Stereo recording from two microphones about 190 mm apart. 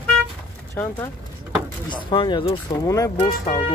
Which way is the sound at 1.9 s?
25° left (ahead or behind).